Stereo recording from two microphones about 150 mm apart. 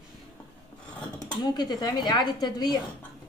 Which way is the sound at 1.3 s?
30° left (ahead or behind).